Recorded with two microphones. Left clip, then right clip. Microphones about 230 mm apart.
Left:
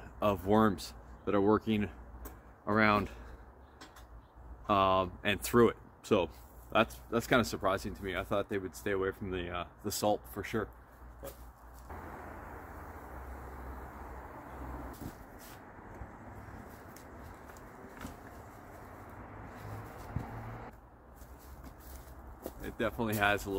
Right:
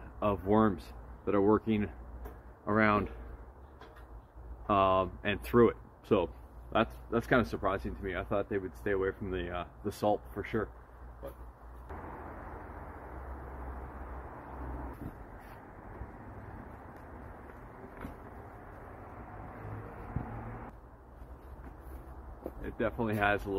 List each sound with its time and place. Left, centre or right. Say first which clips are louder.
0.2 s speech: even; centre
4.6 s speech: right 1 dB; centre
22.6 s speech: right 1 dB; centre